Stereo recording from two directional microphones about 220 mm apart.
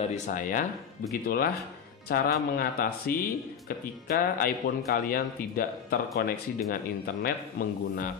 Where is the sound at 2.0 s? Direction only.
45° left (ahead or behind).